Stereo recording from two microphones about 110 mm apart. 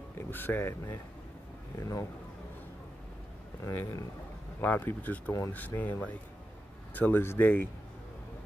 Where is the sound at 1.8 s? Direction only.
30° left (ahead or behind).